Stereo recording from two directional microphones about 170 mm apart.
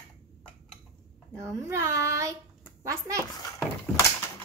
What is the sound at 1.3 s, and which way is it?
A child's voice, 15° right (ahead or behind).